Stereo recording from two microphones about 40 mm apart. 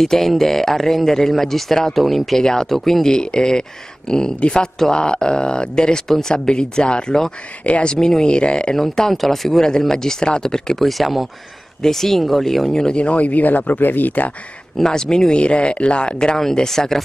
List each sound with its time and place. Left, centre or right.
0.0 s speech: centre
3.1 s speech: centre
6.0 s speech: centre
6.3 s speech: left
8.7 s speech: centre
10.8 s speech: centre
12.7 s speech: centre
13.0 s speech: left
14.8 s speech: centre
15.3 s speech: left
16.5 s speech: centre